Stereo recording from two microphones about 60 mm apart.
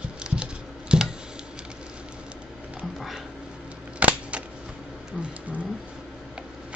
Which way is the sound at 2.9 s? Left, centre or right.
Centre.